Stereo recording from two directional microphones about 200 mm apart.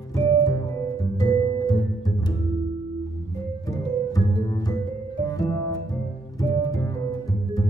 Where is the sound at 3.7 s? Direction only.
15° left (ahead or behind).